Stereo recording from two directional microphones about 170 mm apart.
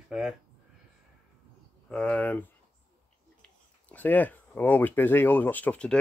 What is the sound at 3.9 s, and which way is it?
Speech, 10° left (ahead or behind).